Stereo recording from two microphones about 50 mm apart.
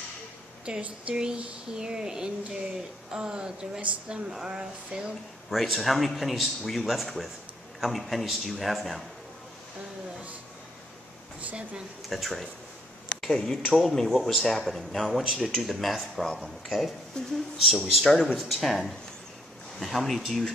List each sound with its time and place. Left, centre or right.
0.7 s speech: centre
5.6 s speech: centre
12.1 s speech: centre